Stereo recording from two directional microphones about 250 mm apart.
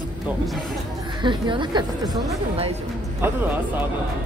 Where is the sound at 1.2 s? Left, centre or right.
Centre.